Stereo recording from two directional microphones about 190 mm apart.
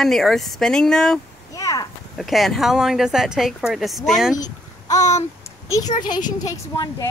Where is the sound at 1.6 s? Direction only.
15° left (ahead or behind).